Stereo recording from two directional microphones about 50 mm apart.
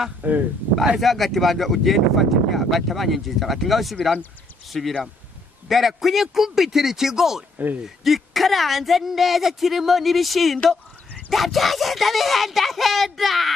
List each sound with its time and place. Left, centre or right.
0.2 s a man's voice: right
0.9 s speech: centre
7.5 s speech: right
7.8 s speech: centre